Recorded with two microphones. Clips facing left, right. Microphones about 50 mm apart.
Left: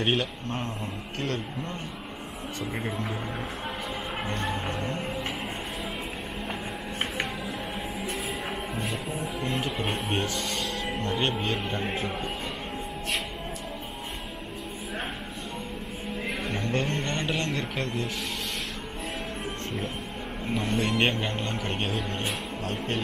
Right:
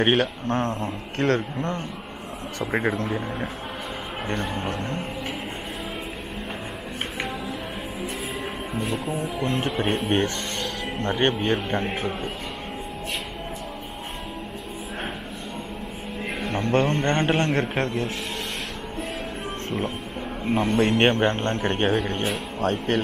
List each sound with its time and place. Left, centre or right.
0.0 s a man's voice: right
4.6 s music: centre
8.7 s music: centre
9.4 s a man's voice: right
16.5 s a sound: right
17.0 s a man's voice: right
20.5 s a man's voice: right